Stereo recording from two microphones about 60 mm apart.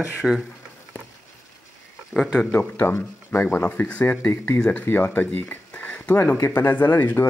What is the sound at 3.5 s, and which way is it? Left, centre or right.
Speech, left.